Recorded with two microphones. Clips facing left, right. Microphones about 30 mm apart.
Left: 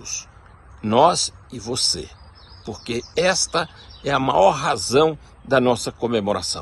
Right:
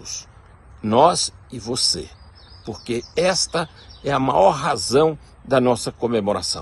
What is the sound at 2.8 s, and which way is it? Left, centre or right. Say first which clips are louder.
A man's voice: even; left.